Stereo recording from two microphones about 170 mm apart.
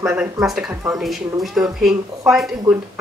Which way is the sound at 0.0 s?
5° right (ahead or behind).